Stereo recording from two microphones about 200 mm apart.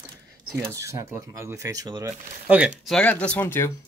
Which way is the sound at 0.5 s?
15° right (ahead or behind).